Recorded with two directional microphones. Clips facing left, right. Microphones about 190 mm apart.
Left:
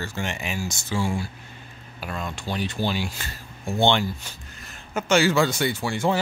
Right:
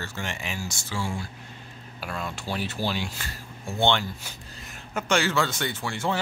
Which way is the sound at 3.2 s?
25° left (ahead or behind).